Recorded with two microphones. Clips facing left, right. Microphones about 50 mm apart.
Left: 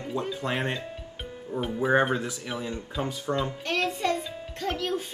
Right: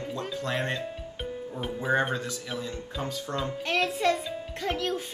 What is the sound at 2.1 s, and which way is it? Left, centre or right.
Speech, left.